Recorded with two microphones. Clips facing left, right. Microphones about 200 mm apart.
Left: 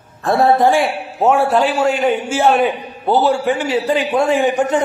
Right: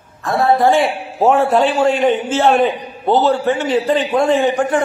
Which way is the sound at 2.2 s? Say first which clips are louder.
Right 1 dB; 10° left (ahead or behind).